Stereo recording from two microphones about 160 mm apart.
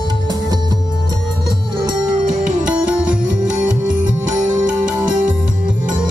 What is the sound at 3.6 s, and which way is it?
Music, 5° right (ahead or behind).